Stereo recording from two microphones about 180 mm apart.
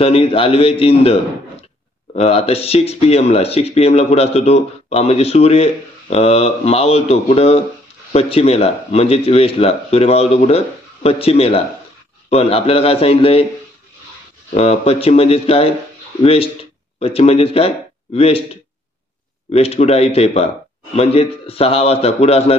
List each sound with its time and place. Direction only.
0.0 s speech: 35° left (ahead or behind)
14.5 s speech: 35° left (ahead or behind)